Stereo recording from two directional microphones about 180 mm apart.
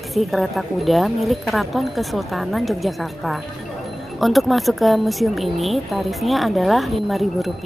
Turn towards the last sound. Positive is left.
turn(degrees=0)  # may be behind; listen again after turning